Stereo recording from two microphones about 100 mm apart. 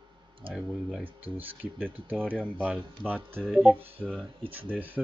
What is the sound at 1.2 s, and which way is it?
Speech, 20° right (ahead or behind).